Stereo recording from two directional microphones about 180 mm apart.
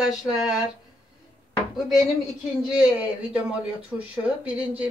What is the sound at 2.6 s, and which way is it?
A man's voice, 5° right (ahead or behind).